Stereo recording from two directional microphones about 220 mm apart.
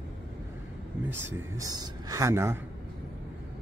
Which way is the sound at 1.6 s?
15° right (ahead or behind).